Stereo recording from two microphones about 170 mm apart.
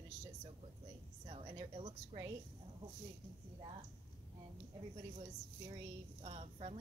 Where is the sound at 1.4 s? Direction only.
30° right (ahead or behind).